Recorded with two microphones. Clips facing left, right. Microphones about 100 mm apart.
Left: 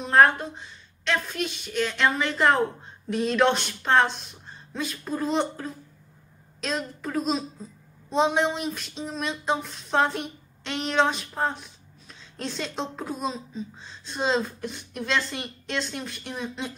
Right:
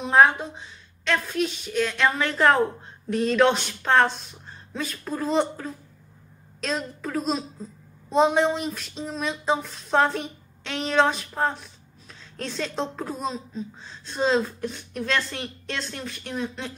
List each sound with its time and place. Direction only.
0.0 s a woman's voice: 5° right (ahead or behind)